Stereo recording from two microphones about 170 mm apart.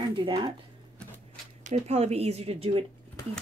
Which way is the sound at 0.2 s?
30° right (ahead or behind).